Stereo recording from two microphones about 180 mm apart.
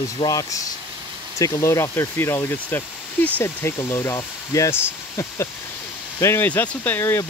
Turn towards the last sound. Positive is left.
turn(degrees=15)  # may be behind; listen again after turning